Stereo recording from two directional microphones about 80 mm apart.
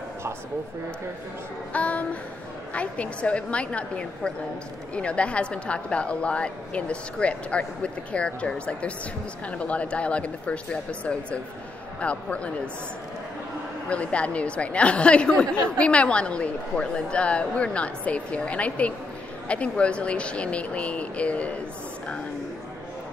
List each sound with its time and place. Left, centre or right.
1.7 s a woman's voice: centre
13.8 s a woman's voice: centre